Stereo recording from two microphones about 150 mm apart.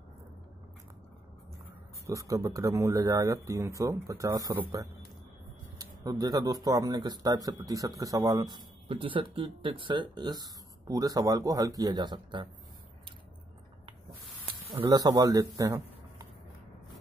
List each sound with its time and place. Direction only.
2.0 s speech: 20° right (ahead or behind)
5.8 s speech: 25° right (ahead or behind)
14.8 s a man's voice: 25° right (ahead or behind)